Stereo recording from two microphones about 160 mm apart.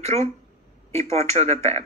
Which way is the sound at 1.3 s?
40° right (ahead or behind).